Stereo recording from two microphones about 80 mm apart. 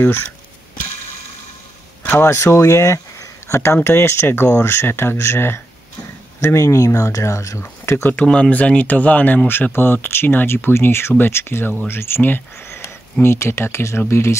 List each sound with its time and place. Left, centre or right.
0.0 s speech: left
2.0 s speech: left
8.2 s speech: centre; by 14.3 s left